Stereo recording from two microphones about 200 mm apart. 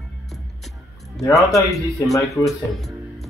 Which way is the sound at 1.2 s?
15° left (ahead or behind).